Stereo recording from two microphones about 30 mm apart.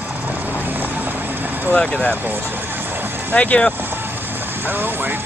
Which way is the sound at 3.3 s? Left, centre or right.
Left.